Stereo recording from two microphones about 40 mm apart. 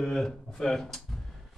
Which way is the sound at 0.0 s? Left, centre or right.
Centre.